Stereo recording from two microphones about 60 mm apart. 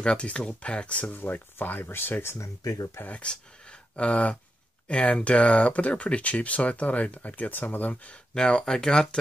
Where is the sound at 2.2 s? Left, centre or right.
Left.